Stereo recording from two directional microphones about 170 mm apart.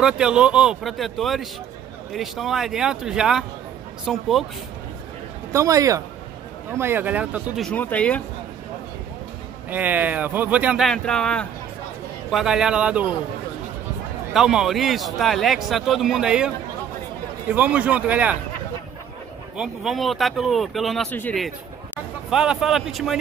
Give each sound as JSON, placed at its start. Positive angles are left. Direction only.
{"t": 0.0, "sound": "a man's voice", "side_deg": -5}
{"t": 5.5, "sound": "a man's voice", "side_deg": -20}
{"t": 7.6, "sound": "speech", "side_deg": 10}
{"t": 9.7, "sound": "speech", "side_deg": -10}
{"t": 10.9, "sound": "a man's voice", "side_deg": 5}
{"t": 14.3, "sound": "a man's voice", "side_deg": -5}
{"t": 19.5, "sound": "a man's voice", "side_deg": -5}
{"t": 22.3, "sound": "a man's voice", "side_deg": -5}